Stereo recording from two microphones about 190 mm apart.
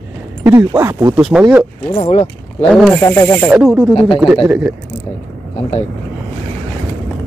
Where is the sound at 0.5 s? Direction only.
10° right (ahead or behind).